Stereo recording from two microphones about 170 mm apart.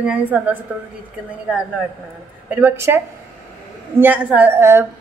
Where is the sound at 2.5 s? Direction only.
10° right (ahead or behind).